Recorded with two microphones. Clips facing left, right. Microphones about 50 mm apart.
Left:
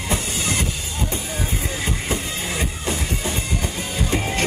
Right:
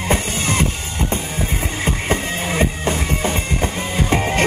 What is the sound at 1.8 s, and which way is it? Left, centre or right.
Music, right.